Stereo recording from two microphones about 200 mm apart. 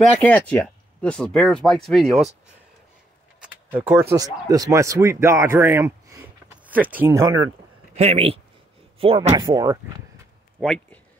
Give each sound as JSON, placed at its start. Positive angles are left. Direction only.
{"t": 0.2, "sound": "speech", "side_deg": 5}
{"t": 3.7, "sound": "speech", "side_deg": -10}
{"t": 7.9, "sound": "speech", "side_deg": -30}
{"t": 10.6, "sound": "a sound", "side_deg": 0}